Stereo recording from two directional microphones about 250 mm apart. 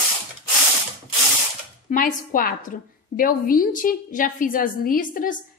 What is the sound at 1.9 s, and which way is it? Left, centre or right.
A woman's voice, left.